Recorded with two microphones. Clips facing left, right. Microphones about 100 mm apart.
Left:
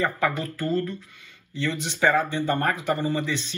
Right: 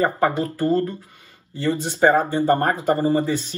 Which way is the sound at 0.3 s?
25° right (ahead or behind).